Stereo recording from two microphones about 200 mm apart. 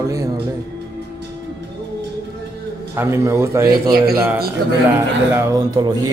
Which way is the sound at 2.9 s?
10° right (ahead or behind).